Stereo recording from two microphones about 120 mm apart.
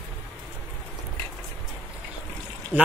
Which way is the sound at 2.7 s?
15° right (ahead or behind).